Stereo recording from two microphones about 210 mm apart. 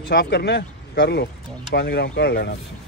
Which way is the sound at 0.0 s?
50° left (ahead or behind).